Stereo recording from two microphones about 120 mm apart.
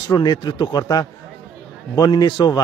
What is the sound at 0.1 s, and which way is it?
A man's voice, 35° left (ahead or behind).